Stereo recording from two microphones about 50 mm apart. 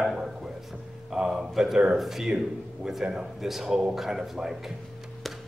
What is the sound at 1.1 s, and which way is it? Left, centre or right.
A man's voice, centre.